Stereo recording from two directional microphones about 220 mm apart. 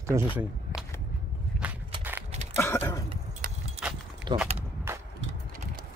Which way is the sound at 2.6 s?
10° left (ahead or behind).